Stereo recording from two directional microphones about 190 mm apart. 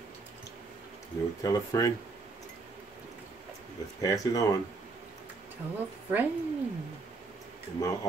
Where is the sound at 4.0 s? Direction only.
20° left (ahead or behind).